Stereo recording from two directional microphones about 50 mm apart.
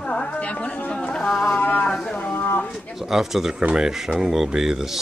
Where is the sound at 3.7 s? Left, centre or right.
Centre.